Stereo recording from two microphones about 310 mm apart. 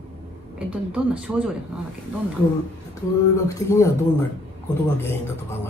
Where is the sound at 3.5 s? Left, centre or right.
Centre.